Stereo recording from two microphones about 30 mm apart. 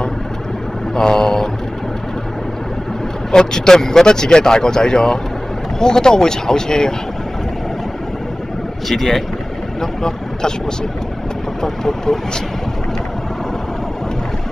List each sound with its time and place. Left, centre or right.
0.9 s a sound: left
3.3 s speech: left
8.8 s speech: centre
9.8 s speech: left
11.6 s speech: centre